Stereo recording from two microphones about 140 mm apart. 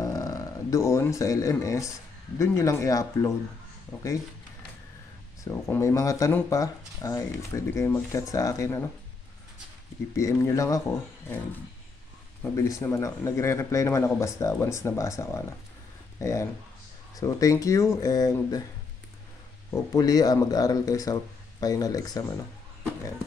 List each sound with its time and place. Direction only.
0.0 s speech: 25° left (ahead or behind)
5.4 s speech: 20° left (ahead or behind)
10.1 s speech: 20° left (ahead or behind)
12.5 s speech: 20° left (ahead or behind)
19.7 s speech: 25° left (ahead or behind)